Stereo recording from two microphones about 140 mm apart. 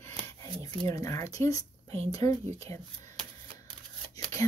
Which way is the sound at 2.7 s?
20° left (ahead or behind).